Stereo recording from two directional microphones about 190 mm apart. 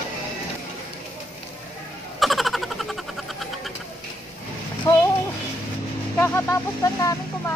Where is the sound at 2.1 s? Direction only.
Centre (ahead or behind).